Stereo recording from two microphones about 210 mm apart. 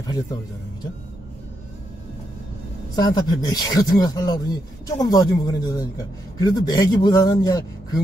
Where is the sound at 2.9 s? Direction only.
20° left (ahead or behind).